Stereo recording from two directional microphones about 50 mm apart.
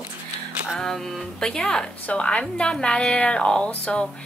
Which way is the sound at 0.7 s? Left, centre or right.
Centre.